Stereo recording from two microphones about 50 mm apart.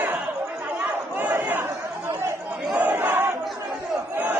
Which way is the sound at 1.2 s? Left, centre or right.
Right.